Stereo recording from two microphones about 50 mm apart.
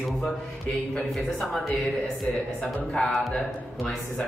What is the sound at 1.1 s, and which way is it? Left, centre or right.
Speech, centre.